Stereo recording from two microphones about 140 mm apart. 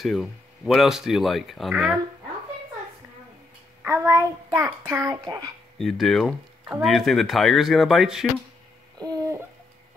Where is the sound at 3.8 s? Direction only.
20° right (ahead or behind).